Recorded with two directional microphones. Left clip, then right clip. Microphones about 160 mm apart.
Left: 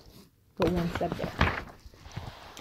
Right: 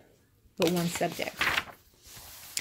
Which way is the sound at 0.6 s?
15° left (ahead or behind).